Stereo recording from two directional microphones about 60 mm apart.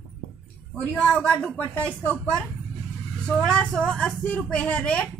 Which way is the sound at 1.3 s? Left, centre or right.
Left.